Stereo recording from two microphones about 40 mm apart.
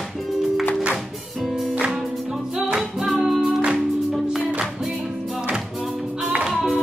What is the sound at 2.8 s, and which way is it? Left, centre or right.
Music, centre.